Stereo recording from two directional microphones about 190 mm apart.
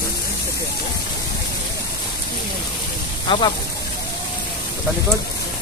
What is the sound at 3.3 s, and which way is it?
Speech, 25° left (ahead or behind).